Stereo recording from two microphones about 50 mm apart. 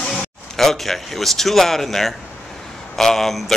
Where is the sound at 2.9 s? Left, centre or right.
Centre.